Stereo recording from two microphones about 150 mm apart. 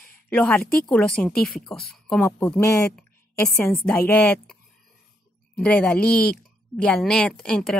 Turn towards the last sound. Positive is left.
turn(degrees=5)  # may be behind; listen again after turning